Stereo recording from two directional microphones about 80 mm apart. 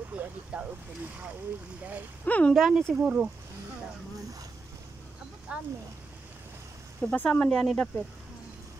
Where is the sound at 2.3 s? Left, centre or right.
Centre.